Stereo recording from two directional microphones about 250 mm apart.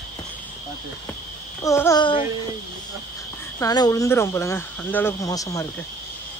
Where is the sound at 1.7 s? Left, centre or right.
Centre.